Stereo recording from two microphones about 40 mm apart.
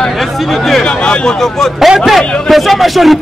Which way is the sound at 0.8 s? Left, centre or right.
Left.